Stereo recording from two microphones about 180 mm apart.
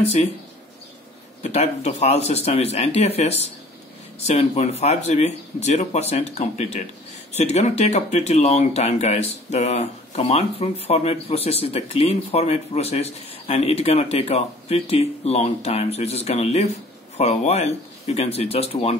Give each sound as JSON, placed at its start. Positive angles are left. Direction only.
{"t": 0.0, "sound": "speech", "side_deg": 35}
{"t": 1.4, "sound": "speech", "side_deg": 35}